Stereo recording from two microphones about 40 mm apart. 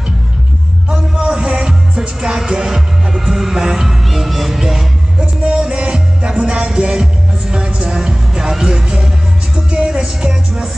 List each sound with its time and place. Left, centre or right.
0.8 s music: centre
1.7 s music: centre
3.1 s music: centre
4.1 s music: centre
5.2 s music: right